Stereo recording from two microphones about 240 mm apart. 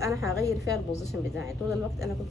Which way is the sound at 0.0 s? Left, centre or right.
Centre.